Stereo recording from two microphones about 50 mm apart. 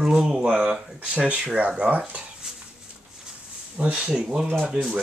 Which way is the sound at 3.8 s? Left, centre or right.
Right.